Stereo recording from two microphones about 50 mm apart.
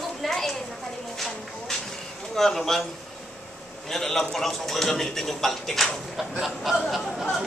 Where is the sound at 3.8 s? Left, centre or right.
Centre.